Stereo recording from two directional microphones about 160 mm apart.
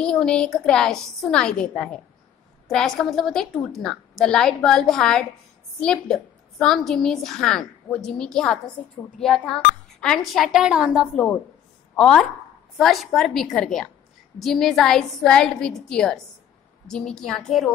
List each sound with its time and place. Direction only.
0.0 s a woman's voice: 5° left (ahead or behind)